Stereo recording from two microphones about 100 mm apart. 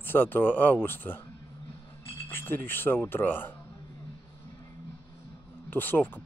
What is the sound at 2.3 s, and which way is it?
Speech, 20° left (ahead or behind).